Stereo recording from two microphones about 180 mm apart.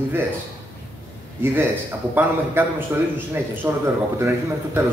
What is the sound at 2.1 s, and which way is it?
A man's voice, 10° right (ahead or behind).